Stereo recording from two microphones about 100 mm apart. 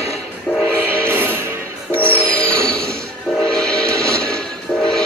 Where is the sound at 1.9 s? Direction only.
15° left (ahead or behind).